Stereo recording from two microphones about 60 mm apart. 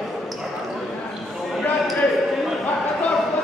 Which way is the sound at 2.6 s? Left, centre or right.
Left.